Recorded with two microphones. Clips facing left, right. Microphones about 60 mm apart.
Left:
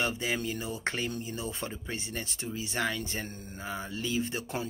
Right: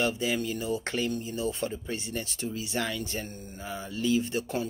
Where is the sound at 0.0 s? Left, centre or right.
Left.